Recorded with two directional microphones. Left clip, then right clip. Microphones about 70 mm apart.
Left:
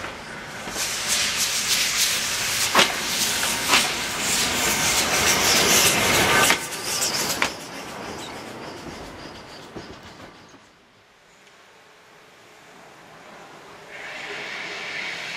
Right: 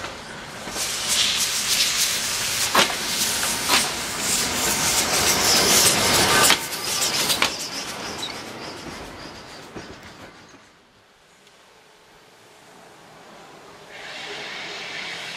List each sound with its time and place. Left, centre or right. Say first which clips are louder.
0.3 s rub: even; centre
6.3 s printer: right 2 dB; right
6.7 s bird flight: right 2 dB; right
7.5 s bird flight: right 5 dB; right
7.9 s train: right 3 dB; right
13.9 s vehicle: left 1 dB; centre